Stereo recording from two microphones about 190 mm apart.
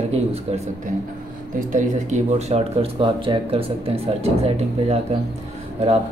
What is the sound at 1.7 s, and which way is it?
Speech, 40° right (ahead or behind).